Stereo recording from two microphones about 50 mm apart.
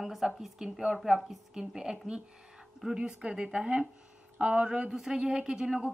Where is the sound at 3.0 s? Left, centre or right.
Centre.